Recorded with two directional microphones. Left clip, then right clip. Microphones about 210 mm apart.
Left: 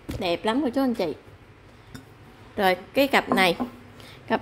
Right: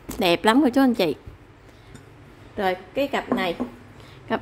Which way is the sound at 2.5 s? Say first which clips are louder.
Left 2 dB; 15° left (ahead or behind).